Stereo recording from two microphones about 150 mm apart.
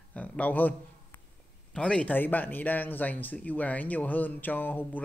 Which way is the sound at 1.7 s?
5° left (ahead or behind).